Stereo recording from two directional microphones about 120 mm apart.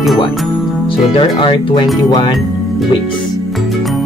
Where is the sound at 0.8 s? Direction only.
45° left (ahead or behind).